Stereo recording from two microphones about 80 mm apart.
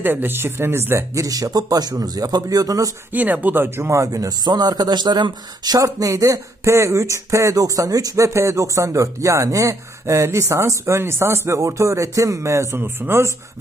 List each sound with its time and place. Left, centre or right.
0.0 s speech: right
3.1 s speech: right
4.5 s speech: right